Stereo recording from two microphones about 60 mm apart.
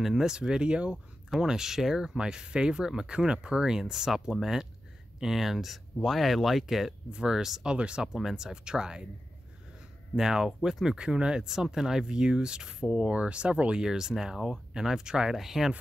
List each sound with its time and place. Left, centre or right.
0.0 s speech: centre
10.1 s speech: centre